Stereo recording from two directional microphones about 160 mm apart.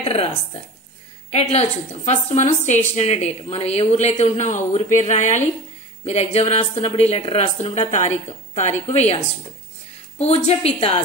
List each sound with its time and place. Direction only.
0.0 s speech: 40° left (ahead or behind)
1.3 s a woman's voice: 40° left (ahead or behind)